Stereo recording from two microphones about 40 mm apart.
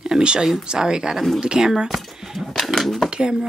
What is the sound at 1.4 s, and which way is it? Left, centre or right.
Speech, right.